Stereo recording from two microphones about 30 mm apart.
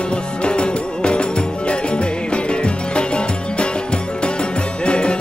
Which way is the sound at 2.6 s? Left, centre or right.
Left.